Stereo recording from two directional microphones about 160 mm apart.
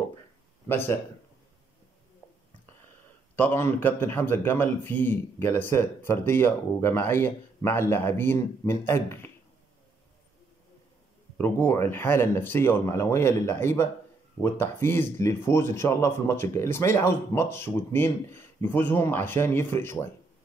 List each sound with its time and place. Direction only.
0.7 s a man's voice: 15° left (ahead or behind)
3.3 s a man's voice: 15° left (ahead or behind)
11.3 s a man's voice: 10° left (ahead or behind)